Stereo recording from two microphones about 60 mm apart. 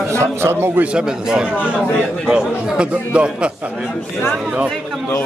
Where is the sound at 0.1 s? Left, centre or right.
Right.